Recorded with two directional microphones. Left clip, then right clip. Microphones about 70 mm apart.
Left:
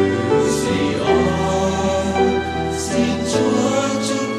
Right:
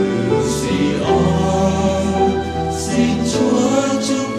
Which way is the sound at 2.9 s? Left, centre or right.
Centre.